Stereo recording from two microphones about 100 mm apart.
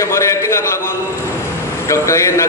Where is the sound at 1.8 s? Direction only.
30° left (ahead or behind).